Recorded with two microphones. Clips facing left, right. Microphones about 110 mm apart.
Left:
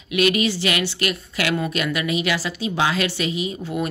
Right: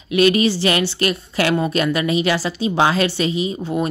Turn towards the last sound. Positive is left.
turn(degrees=-30)  # may be behind; listen again after turning